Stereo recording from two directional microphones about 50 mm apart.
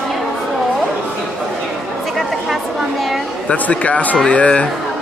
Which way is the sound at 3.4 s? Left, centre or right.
Left.